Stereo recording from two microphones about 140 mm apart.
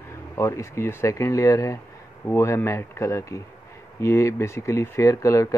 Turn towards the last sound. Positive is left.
turn(degrees=20)  # may be behind; listen again after turning